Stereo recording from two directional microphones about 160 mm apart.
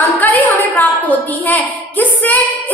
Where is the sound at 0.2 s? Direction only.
10° left (ahead or behind).